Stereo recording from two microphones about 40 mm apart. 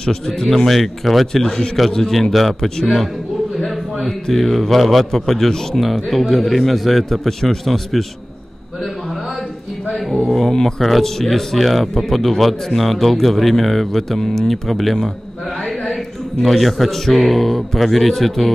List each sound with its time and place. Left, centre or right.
0.0 s a man's voice: centre
0.7 s a man's voice: centre
10.2 s speech: centre
15.6 s a sound: centre
16.4 s speech: centre